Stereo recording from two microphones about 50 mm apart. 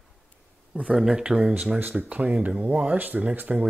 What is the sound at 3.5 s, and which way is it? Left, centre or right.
Speech, centre.